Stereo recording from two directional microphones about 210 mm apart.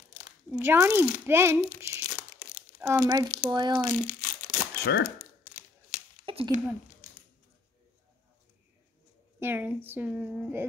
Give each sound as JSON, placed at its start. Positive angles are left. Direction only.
{"t": 0.5, "sound": "a woman's voice", "side_deg": -10}
{"t": 1.8, "sound": "crumpling", "side_deg": -10}
{"t": 2.8, "sound": "a woman's voice", "side_deg": -15}
{"t": 4.1, "sound": "crumpling", "side_deg": 40}
{"t": 6.2, "sound": "speech", "side_deg": -25}
{"t": 9.4, "sound": "a woman's voice", "side_deg": -10}